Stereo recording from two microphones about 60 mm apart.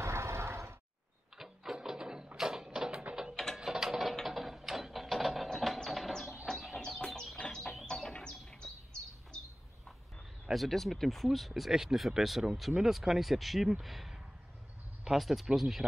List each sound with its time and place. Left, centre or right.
0.0 s a sound: right
1.4 s ratchet: centre
2.3 s mechanisms: centre
3.5 s ratchet: centre
5.9 s a sound: centre
6.8 s bird: centre
7.3 s music: centre
7.8 s a sound: centre
10.4 s speech: centre